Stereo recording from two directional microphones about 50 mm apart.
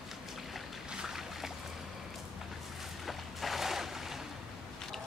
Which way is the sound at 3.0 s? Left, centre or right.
Centre.